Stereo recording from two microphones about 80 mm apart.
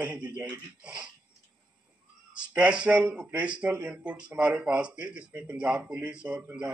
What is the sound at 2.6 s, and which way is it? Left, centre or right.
A man's voice, centre.